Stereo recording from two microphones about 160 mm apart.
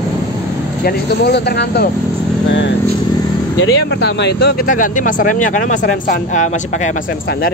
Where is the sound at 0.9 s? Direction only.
80° left.